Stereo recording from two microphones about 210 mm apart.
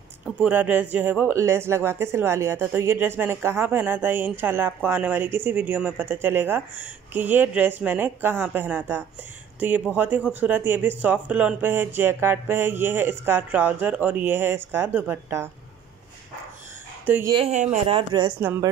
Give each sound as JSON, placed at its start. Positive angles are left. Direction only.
{"t": 0.2, "sound": "speech", "side_deg": -10}
{"t": 17.0, "sound": "speech", "side_deg": -10}
{"t": 17.4, "sound": "speech", "side_deg": -30}